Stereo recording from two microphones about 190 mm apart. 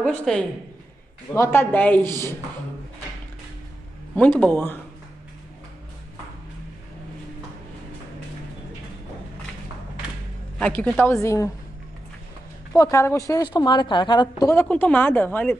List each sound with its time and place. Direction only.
0.0 s a woman's voice: 5° left (ahead or behind)
4.1 s speech: 5° left (ahead or behind)
10.6 s speech: 10° left (ahead or behind)
12.7 s a woman's voice: 15° left (ahead or behind)
14.5 s speech: 10° left (ahead or behind)